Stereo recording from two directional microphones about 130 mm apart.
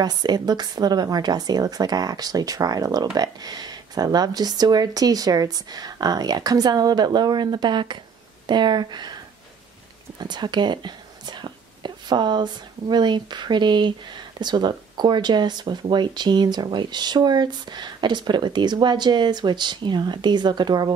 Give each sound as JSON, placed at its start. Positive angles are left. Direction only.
{"t": 0.0, "sound": "speech", "side_deg": -30}